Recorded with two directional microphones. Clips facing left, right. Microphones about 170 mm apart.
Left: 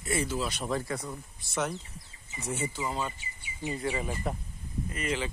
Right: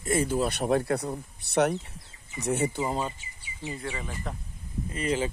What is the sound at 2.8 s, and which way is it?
Speech, 30° right (ahead or behind).